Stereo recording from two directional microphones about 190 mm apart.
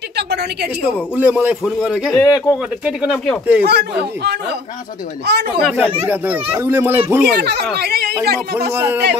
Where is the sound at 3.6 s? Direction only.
60° right (ahead or behind).